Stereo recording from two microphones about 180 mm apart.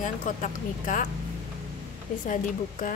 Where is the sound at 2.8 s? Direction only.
50° left (ahead or behind).